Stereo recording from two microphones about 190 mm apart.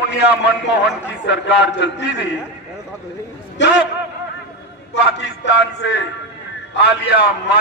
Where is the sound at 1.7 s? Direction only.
65° left (ahead or behind).